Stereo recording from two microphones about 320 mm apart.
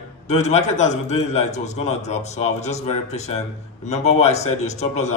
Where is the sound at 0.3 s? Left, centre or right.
Left.